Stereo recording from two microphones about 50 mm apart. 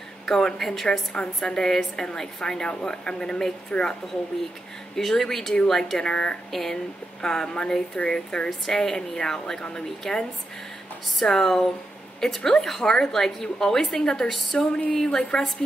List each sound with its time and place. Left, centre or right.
0.3 s a woman's voice: centre
4.9 s a woman's voice: centre
6.5 s a woman's voice: centre
15.0 s a woman's voice: centre